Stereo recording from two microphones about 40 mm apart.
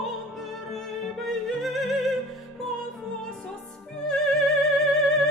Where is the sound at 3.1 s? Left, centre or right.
Centre.